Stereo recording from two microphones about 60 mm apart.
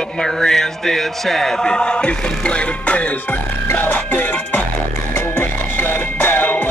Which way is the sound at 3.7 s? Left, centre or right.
Left.